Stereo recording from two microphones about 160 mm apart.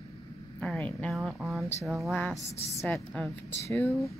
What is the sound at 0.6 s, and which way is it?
A woman's voice, 5° left (ahead or behind).